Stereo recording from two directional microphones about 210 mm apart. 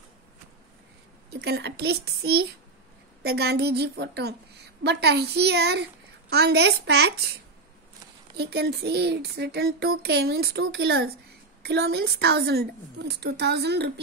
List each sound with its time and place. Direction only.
1.3 s a woman's voice: 55° right (ahead or behind)
8.4 s a woman's voice: 50° right (ahead or behind)